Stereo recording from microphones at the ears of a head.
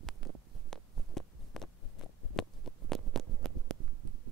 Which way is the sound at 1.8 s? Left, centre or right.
Left.